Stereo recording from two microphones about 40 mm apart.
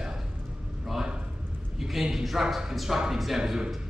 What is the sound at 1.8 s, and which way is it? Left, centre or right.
Speech, centre.